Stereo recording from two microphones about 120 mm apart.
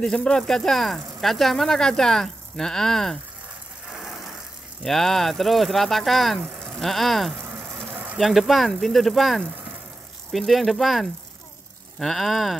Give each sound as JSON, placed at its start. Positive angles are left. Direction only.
{"t": 0.0, "sound": "speech", "side_deg": 5}
{"t": 3.9, "sound": "ratchet", "side_deg": -5}
{"t": 4.8, "sound": "speech", "side_deg": 5}
{"t": 7.4, "sound": "a sound", "side_deg": -15}
{"t": 8.2, "sound": "speech", "side_deg": 0}